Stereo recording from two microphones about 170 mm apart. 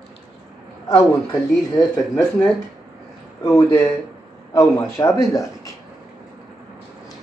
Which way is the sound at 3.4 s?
15° left (ahead or behind).